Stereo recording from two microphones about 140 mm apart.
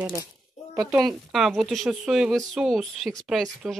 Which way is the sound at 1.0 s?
Centre (ahead or behind).